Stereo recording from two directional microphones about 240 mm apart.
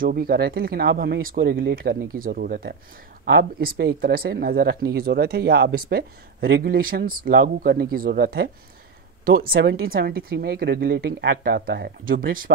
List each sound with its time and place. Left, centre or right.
0.0 s a woman's voice: right